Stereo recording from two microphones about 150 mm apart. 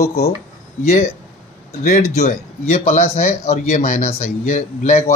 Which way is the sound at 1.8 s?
50° left (ahead or behind).